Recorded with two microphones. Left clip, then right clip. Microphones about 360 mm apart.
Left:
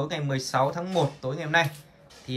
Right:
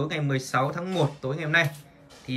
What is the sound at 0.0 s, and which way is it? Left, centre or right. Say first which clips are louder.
Speech: right 1 dB; centre.